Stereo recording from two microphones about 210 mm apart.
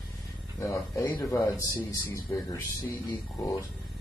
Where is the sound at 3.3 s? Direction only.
15° left (ahead or behind).